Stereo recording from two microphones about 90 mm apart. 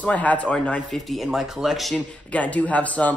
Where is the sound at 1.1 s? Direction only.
Centre (ahead or behind).